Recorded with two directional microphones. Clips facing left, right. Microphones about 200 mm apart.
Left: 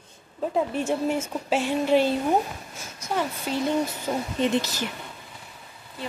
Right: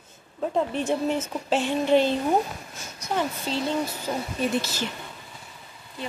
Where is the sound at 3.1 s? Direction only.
10° left (ahead or behind).